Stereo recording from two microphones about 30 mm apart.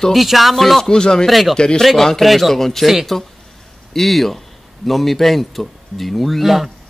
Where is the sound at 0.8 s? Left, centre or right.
Left.